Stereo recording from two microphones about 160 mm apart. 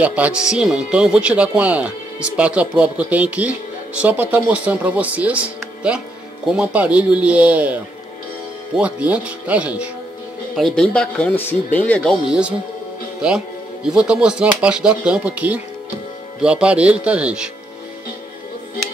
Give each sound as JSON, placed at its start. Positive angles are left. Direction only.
{"t": 0.0, "sound": "speech", "side_deg": -10}
{"t": 10.5, "sound": "speech", "side_deg": 5}
{"t": 13.8, "sound": "speech", "side_deg": -5}